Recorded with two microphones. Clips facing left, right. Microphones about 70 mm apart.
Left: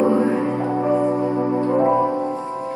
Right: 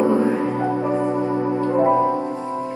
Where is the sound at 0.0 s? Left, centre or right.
Left.